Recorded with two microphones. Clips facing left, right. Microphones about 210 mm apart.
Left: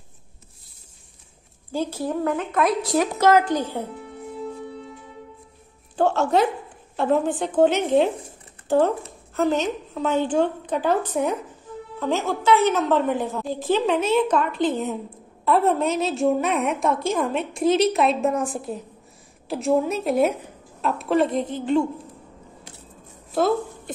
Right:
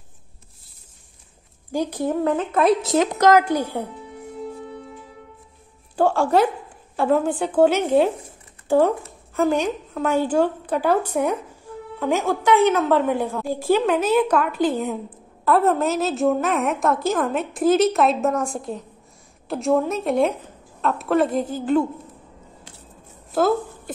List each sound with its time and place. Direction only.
1.7 s a woman's voice: 15° right (ahead or behind)
5.9 s a woman's voice: 10° right (ahead or behind)